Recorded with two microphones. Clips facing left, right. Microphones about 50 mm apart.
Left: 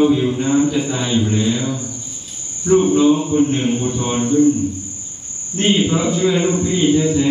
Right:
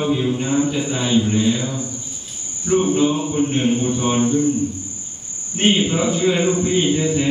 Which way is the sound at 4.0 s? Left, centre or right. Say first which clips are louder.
Left 5 dB; centre.